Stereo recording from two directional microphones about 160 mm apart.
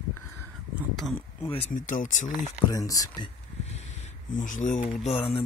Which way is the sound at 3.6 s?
45° left (ahead or behind).